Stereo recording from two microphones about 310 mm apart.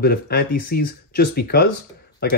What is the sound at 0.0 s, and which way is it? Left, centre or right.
Speech, left.